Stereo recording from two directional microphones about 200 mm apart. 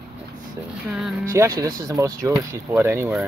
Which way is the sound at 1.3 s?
15° right (ahead or behind).